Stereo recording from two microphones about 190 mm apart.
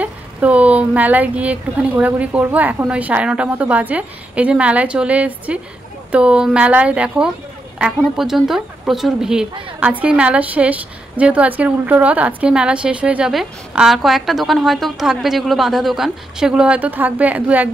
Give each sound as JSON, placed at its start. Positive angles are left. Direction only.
{"t": 0.0, "sound": "a woman's voice", "side_deg": -5}